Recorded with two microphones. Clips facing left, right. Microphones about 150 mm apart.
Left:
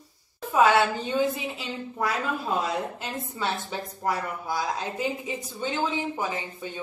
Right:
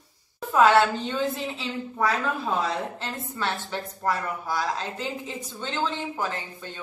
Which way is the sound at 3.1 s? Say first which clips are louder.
Even; 15° left (ahead or behind).